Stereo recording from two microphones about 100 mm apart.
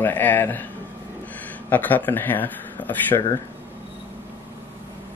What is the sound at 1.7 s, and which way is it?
Speech, 20° left (ahead or behind).